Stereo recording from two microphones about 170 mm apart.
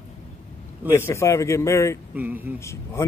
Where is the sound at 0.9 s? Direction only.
15° left (ahead or behind).